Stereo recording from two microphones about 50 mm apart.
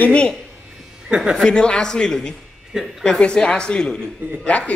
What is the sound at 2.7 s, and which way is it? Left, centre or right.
Speech, centre.